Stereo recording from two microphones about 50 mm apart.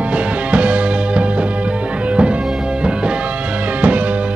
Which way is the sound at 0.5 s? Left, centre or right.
Right.